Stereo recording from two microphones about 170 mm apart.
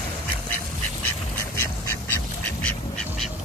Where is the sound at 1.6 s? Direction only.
15° left (ahead or behind).